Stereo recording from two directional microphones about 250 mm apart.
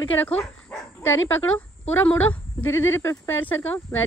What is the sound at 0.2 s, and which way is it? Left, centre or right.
Dog, centre.